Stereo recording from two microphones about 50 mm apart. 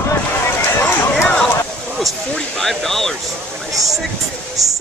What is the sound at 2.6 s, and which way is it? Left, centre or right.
Speech, centre.